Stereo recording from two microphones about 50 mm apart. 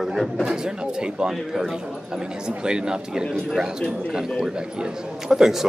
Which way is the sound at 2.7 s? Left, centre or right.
Centre.